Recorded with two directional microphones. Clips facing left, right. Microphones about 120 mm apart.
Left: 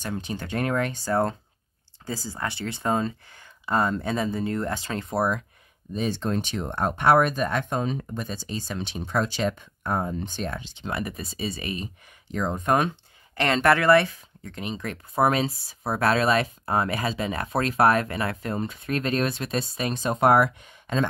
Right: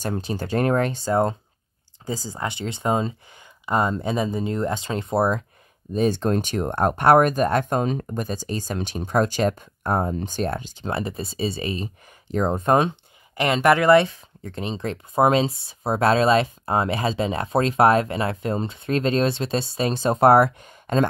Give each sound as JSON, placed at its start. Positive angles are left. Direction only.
{"t": 0.0, "sound": "speech", "side_deg": -35}
{"t": 5.9, "sound": "speech", "side_deg": -45}
{"t": 13.3, "sound": "speech", "side_deg": -15}